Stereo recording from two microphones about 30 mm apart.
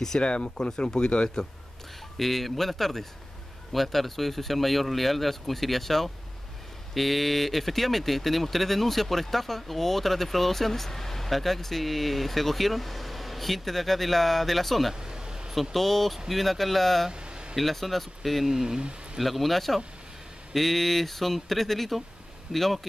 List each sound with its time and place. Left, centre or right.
0.4 s speech: left
2.1 s speech: centre
15.0 s vehicle: right
15.7 s speech: centre
17.1 s a sound: right
17.6 s speech: centre
18.5 s speech: centre
19.1 s speech: centre